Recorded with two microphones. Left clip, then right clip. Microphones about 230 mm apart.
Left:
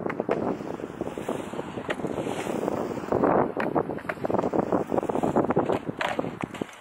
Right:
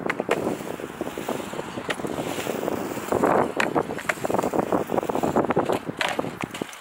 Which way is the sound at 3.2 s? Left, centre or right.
Centre.